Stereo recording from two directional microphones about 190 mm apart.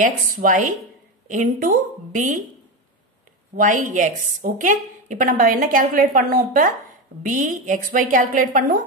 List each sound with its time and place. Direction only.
0.0 s a woman's voice: 45° right (ahead or behind)
3.5 s a woman's voice: 40° right (ahead or behind)